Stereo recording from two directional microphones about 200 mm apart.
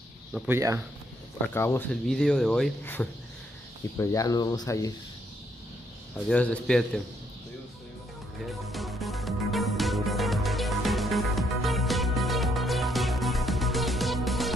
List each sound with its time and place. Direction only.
0.5 s speech: 15° right (ahead or behind)
1.5 s speech: 10° left (ahead or behind)
6.2 s speech: 5° left (ahead or behind)
8.5 s music: centre (ahead or behind)